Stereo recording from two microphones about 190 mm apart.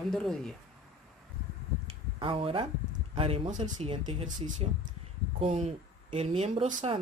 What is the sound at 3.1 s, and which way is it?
Speech, 30° right (ahead or behind).